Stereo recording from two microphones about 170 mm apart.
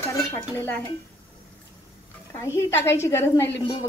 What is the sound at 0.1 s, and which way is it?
Dishes, 15° left (ahead or behind).